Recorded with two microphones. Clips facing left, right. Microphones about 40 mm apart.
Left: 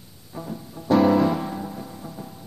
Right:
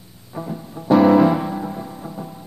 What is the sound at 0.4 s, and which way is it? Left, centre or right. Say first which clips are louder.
Music: right 5 dB; centre.